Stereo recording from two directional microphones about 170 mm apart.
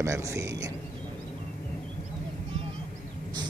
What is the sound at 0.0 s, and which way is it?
Speech, 15° right (ahead or behind).